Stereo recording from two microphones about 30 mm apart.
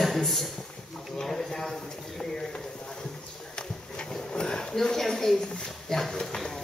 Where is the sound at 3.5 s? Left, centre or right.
Left.